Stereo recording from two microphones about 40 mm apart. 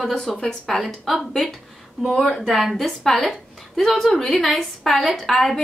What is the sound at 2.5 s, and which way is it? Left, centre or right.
A woman's voice, centre.